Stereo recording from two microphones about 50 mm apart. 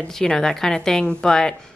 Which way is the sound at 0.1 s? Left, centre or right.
Centre.